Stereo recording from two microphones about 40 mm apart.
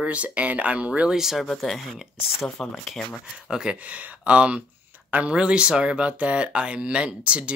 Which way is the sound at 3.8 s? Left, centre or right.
Right.